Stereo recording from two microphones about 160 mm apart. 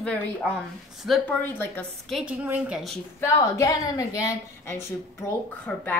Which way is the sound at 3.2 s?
20° left (ahead or behind).